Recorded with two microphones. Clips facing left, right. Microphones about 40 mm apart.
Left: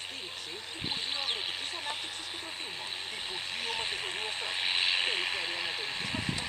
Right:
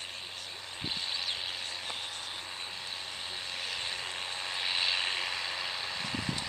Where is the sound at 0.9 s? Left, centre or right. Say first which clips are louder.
Left 1 dB; left.